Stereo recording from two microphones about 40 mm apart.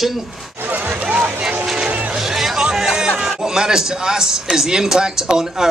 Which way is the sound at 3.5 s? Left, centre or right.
Centre.